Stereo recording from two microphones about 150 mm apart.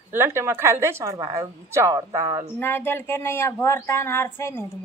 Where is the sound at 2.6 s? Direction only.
15° left (ahead or behind).